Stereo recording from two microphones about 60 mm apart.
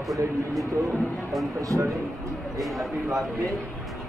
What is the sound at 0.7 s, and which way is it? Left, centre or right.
Speech, right.